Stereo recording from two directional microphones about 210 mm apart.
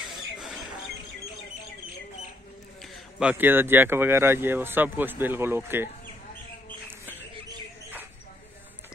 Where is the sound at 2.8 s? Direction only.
Centre (ahead or behind).